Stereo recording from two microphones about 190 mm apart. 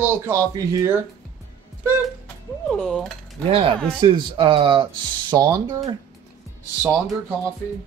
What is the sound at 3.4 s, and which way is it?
Speech, 30° right (ahead or behind).